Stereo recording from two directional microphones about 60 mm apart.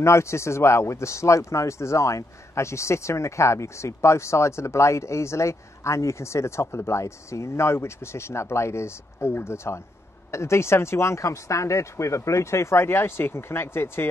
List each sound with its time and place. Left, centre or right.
0.0 s speech: left